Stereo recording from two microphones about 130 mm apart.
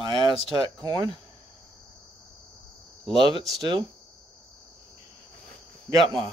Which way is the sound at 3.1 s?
35° right (ahead or behind).